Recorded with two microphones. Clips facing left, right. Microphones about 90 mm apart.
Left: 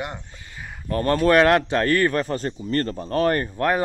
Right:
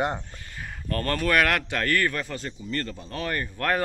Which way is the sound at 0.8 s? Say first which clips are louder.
Left 7 dB; 20° left (ahead or behind).